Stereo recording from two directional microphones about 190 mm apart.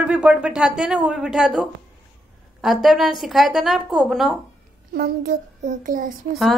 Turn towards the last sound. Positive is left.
turn(degrees=0)  # may be behind; listen again after turning